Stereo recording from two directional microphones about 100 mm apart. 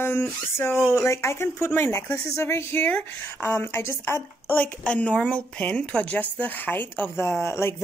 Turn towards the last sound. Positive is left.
turn(degrees=25)  # may be behind; listen again after turning